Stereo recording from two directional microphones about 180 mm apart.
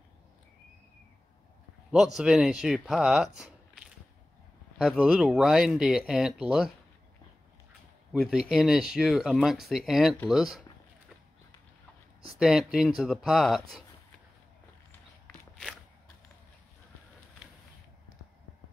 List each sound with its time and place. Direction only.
1.9 s speech: 5° right (ahead or behind)
8.1 s speech: 5° right (ahead or behind)
12.4 s speech: 5° right (ahead or behind)